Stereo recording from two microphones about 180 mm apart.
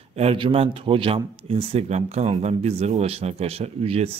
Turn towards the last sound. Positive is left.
turn(degrees=-35)  # may be behind; listen again after turning